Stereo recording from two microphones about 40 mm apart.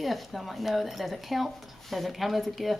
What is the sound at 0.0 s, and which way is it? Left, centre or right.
Speech, centre.